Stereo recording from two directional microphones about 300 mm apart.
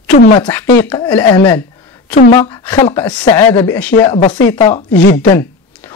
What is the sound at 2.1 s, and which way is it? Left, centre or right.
Speech, left.